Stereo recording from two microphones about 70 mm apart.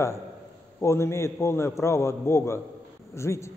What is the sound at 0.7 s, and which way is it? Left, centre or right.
A man's voice, left.